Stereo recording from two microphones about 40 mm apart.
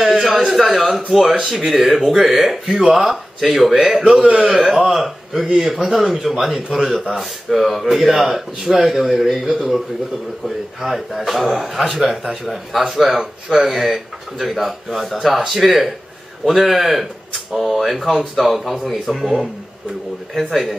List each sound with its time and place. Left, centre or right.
0.0 s a sound: centre
1.3 s speech: centre
4.0 s a man's voice: right
4.5 s a man's voice: centre
7.4 s speech: centre
10.8 s a man's voice: centre